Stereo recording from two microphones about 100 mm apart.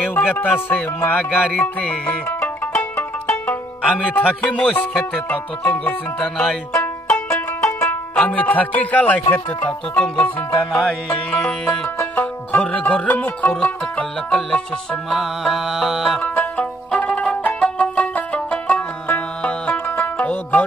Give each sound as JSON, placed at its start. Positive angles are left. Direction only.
{"t": 0.0, "sound": "music", "side_deg": 20}
{"t": 7.2, "sound": "music", "side_deg": 25}
{"t": 10.7, "sound": "music", "side_deg": 0}
{"t": 11.1, "sound": "music", "side_deg": 15}
{"t": 16.2, "sound": "music", "side_deg": 15}